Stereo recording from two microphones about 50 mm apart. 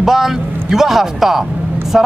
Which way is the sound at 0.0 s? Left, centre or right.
Centre.